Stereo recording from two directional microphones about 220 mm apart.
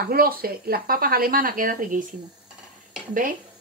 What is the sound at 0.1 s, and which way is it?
Speech, 40° right (ahead or behind).